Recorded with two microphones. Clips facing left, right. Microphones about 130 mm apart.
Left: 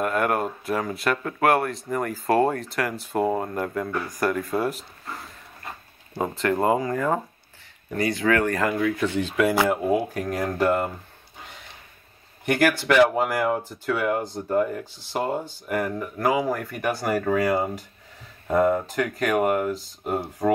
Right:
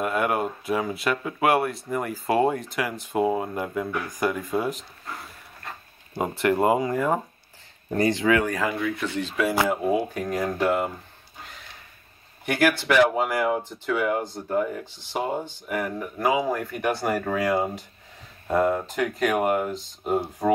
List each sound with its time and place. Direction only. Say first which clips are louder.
0.0 s speech: left 1 dB; 5° right (ahead or behind)
6.1 s speech: right 1 dB; 15° right (ahead or behind)
7.9 s speech: right 3 dB; 30° right (ahead or behind)
8.2 s speech: even; 10° right (ahead or behind)
12.4 s speech: left 1 dB; 10° right (ahead or behind)
13.6 s speech: even; 10° left (ahead or behind)
13.9 s speech: even; centre (ahead or behind)
17.1 s speech: left 5 dB; centre (ahead or behind)